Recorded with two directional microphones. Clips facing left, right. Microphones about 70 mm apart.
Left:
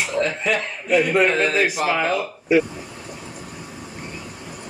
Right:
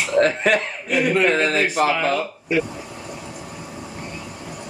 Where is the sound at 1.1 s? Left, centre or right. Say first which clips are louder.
Even; centre.